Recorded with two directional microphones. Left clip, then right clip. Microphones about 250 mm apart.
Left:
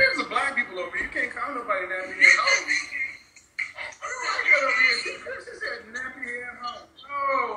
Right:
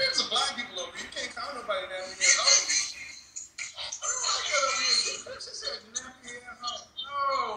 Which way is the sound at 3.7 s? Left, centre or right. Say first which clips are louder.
Left 1 dB; centre.